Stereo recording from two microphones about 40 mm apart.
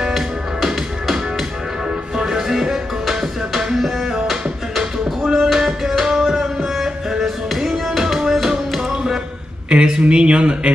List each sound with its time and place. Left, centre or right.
2.1 s music: centre
8.9 s a sound: centre
9.7 s speech: right